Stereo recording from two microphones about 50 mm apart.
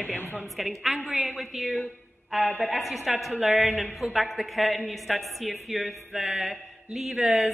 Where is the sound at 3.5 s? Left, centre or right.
Right.